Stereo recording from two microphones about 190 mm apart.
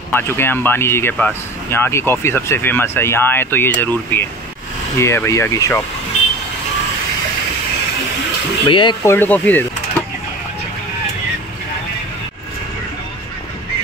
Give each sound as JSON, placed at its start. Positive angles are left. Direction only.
{"t": 0.1, "sound": "speech", "side_deg": 10}
{"t": 8.6, "sound": "speech", "side_deg": 25}
{"t": 9.0, "sound": "speech", "side_deg": 10}